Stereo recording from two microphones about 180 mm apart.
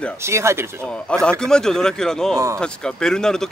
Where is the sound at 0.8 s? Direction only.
5° left (ahead or behind).